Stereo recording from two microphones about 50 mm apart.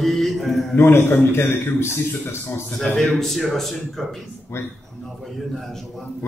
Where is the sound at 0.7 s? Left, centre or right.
Left.